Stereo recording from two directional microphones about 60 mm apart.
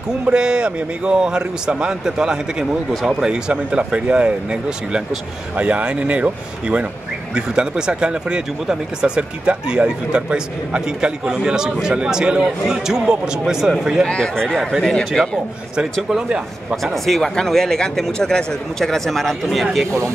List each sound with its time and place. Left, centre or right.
0.3 s speech: centre
2.9 s speech: centre
3.3 s speech: centre
14.0 s speech: centre
15.7 s speech: centre
16.8 s speech: centre